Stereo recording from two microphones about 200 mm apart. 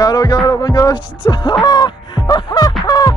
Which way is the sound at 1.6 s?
20° left (ahead or behind).